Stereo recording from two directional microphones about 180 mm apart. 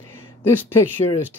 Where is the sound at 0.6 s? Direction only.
10° left (ahead or behind).